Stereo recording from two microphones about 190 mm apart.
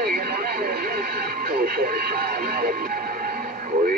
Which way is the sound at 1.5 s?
50° right (ahead or behind).